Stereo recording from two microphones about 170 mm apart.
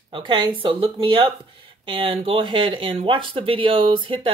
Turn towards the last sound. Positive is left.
turn(degrees=-30)  # may be behind; listen again after turning